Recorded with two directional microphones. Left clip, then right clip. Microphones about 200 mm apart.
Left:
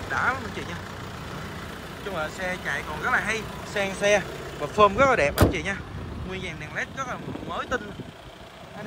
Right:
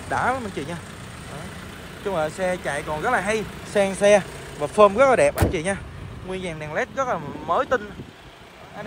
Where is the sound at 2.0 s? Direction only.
10° right (ahead or behind).